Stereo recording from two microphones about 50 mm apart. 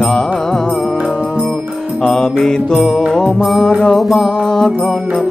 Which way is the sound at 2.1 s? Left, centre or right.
Centre.